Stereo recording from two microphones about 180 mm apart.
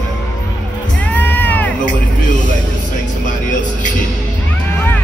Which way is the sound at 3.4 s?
45° left (ahead or behind).